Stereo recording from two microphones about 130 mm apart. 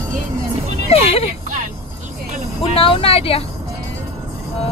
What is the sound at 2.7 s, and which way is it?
Speech, 45° left (ahead or behind).